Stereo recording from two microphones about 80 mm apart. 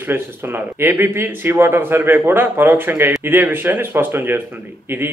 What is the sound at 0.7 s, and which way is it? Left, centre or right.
A man's voice, right.